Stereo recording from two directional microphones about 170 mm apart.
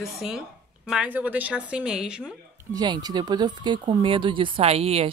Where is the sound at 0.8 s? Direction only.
5° right (ahead or behind).